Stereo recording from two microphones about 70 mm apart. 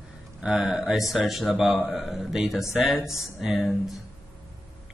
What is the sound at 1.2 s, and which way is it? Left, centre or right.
A man's voice, centre.